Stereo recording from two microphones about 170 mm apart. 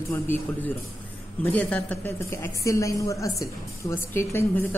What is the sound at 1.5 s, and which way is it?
A woman's voice, 5° left (ahead or behind).